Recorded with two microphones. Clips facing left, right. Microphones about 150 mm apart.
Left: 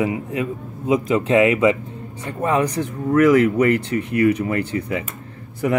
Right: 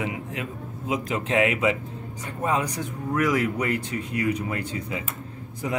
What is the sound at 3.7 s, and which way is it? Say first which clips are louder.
Speech: left 8 dB; 70° left (ahead or behind).